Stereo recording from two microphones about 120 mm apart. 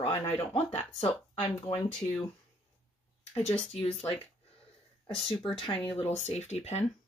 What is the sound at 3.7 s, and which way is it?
Speech, 55° left (ahead or behind).